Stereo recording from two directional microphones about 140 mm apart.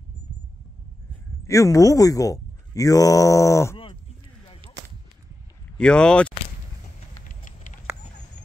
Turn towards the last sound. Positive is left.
turn(degrees=70)  # may be behind; listen again after turning